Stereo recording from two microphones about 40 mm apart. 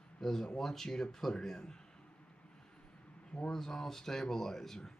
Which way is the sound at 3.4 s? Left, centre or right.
Centre.